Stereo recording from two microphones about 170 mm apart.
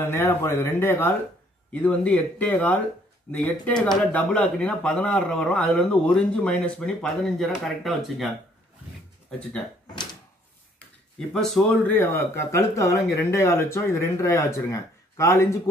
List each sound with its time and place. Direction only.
0.1 s speech: 15° left (ahead or behind)
9.3 s speech: 5° left (ahead or behind)
11.1 s speech: 5° left (ahead or behind)